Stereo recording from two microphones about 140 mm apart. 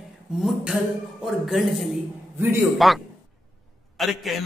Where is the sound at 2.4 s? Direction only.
15° right (ahead or behind).